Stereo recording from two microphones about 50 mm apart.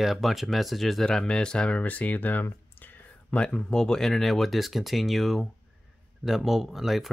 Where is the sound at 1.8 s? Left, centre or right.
Left.